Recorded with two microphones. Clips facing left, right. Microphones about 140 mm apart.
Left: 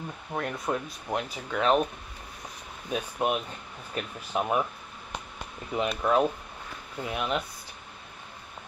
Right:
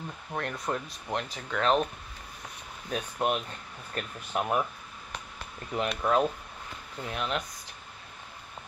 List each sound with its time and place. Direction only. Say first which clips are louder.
0.3 s speech: left 2 dB; 5° left (ahead or behind)
2.9 s speech: left 1 dB; 5° left (ahead or behind)
5.7 s speech: left 1 dB; 5° left (ahead or behind)